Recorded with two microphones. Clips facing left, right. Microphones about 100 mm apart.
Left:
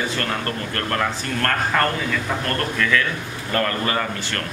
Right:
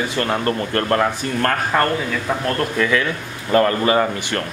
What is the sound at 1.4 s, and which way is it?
Speech, 15° right (ahead or behind).